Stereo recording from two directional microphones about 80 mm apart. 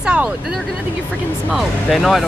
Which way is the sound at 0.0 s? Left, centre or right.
Centre.